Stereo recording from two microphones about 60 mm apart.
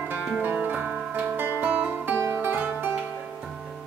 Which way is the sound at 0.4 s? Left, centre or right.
Right.